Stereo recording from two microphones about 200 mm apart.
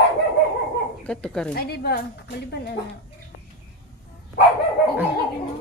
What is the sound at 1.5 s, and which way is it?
Speech, 50° left (ahead or behind).